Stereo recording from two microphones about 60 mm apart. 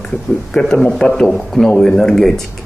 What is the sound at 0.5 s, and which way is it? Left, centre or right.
A man's voice, centre.